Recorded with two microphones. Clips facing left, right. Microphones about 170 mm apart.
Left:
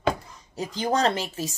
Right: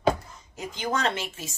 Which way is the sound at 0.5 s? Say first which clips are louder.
Left 4 dB; 35° left (ahead or behind).